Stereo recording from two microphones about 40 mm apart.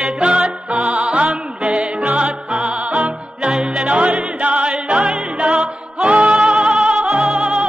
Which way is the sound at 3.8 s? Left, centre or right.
Right.